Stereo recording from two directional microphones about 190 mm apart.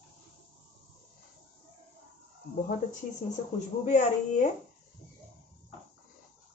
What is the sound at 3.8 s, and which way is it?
Speech, 40° left (ahead or behind).